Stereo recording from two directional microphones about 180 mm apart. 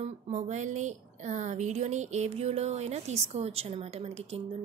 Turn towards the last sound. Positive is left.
turn(degrees=-35)  # may be behind; listen again after turning